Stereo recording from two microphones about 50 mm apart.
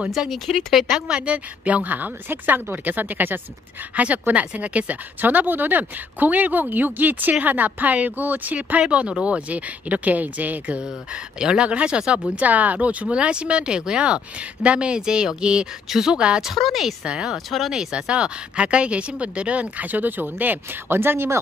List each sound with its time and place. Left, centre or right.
0.3 s speech: centre
1.0 s speech: right
8.8 s speech: right
11.3 s speech: centre
12.4 s speech: right; by 17.4 s centre
17.5 s speech: centre
17.7 s speech: centre; by 21.4 s right